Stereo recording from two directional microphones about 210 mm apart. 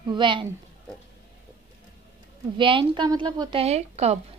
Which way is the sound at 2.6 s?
25° right (ahead or behind).